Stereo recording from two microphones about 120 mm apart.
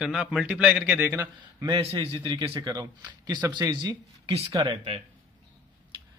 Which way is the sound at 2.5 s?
30° right (ahead or behind).